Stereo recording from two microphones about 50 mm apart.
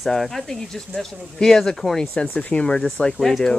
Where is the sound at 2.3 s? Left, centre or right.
Left; by 3.6 s centre.